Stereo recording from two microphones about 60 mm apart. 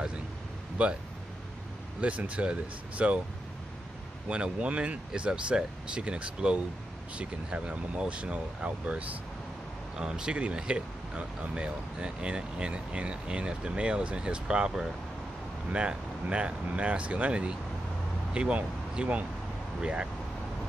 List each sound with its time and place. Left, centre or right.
0.8 s speech: right
2.0 s speech: right
4.3 s speech: centre